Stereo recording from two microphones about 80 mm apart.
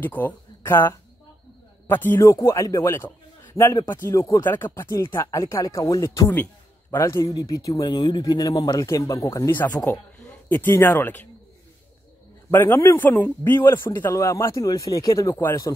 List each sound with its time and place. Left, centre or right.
0.0 s a man's voice: left
2.1 s speech: left
3.8 s speech: left
4.4 s speech: left
6.2 s a sound: left
7.0 s speech: left
7.9 s speech: left
10.5 s a man's voice: left
12.4 s a man's voice: left